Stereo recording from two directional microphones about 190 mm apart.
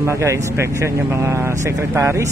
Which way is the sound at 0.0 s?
15° right (ahead or behind).